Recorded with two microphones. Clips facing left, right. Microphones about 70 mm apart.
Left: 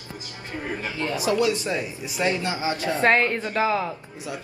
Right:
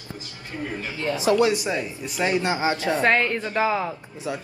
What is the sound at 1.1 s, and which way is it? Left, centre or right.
Speech, right.